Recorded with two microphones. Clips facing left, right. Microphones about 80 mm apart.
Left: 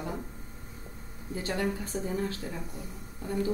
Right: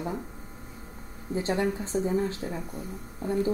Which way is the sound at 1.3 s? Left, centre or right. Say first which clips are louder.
Right 4 dB; right.